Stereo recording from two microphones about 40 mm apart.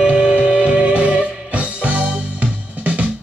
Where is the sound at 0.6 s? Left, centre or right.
Right.